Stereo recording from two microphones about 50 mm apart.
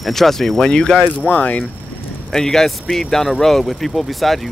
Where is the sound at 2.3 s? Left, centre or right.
Centre.